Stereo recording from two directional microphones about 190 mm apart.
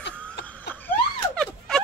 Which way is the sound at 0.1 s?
5° left (ahead or behind).